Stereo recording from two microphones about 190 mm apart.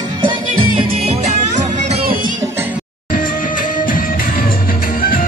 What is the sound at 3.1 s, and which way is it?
Music, 45° left (ahead or behind).